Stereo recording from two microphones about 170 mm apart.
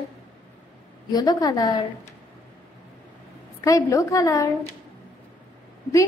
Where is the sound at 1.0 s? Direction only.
25° left (ahead or behind).